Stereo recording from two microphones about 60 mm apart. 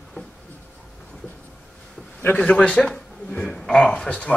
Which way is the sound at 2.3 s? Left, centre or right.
Centre.